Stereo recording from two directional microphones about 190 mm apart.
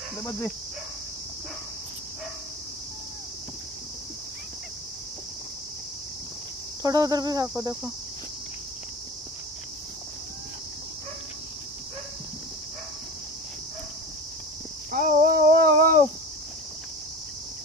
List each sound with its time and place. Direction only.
0.2 s speech: 15° left (ahead or behind)
6.8 s cricket: 20° right (ahead or behind)
14.9 s a sound: 50° right (ahead or behind)